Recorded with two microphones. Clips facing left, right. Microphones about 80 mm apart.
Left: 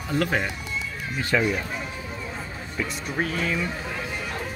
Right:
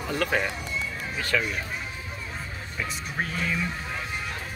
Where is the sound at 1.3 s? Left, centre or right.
Centre.